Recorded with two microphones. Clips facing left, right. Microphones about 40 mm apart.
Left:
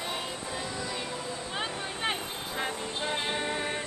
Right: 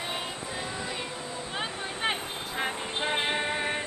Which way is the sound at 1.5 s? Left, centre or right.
Centre.